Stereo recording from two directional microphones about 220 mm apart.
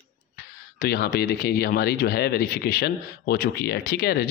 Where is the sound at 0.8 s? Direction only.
45° left (ahead or behind).